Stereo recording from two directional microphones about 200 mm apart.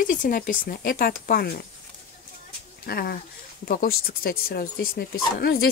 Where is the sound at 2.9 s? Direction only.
50° left (ahead or behind).